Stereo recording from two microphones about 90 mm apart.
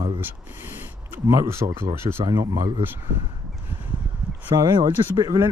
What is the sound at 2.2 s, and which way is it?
Speech, 50° right (ahead or behind).